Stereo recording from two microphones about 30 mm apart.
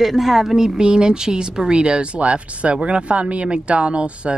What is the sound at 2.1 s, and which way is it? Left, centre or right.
Speech, right.